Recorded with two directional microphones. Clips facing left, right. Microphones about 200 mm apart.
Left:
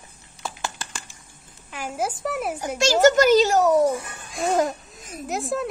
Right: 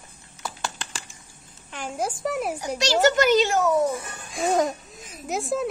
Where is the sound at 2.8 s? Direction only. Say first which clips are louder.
Left 4 dB; 45° left (ahead or behind).